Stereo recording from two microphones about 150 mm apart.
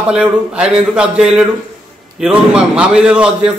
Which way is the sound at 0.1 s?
5° right (ahead or behind).